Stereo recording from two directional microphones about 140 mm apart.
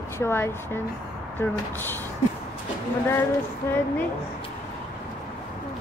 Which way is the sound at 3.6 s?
15° left (ahead or behind).